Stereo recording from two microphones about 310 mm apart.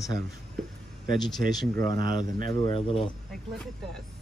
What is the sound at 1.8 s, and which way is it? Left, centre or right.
Speech, centre.